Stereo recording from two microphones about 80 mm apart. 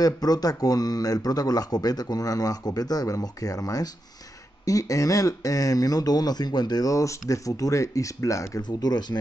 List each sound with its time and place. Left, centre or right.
0.0 s speech: left
8.6 s speech: left